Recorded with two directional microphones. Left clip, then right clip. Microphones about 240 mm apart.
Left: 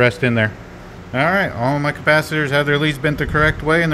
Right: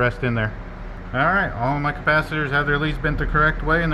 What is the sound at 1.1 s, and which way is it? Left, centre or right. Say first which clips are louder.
Speech: left 3 dB; left.